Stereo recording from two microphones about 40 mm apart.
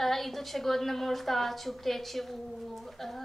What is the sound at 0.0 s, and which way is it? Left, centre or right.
A woman's voice, centre.